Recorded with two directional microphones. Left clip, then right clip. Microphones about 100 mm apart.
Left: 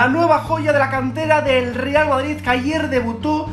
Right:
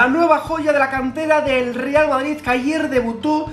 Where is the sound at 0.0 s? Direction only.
15° right (ahead or behind).